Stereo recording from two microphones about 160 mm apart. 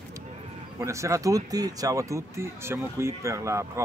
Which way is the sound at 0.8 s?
20° right (ahead or behind).